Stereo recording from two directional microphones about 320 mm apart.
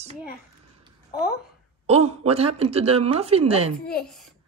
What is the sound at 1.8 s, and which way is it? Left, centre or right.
A woman's voice, centre.